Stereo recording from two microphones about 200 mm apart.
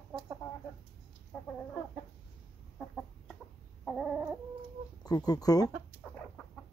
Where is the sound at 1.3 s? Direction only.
5° left (ahead or behind).